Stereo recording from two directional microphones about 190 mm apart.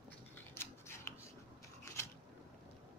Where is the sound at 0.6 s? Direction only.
15° left (ahead or behind).